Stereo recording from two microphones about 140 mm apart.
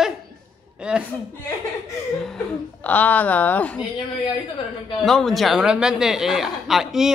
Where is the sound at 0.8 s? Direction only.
5° right (ahead or behind).